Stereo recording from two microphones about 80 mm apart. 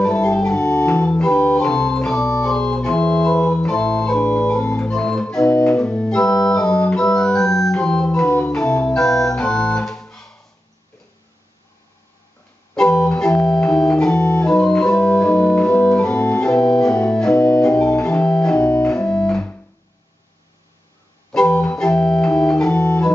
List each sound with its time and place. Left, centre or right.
0.0 s organ: centre
12.7 s organ: centre
21.3 s organ: centre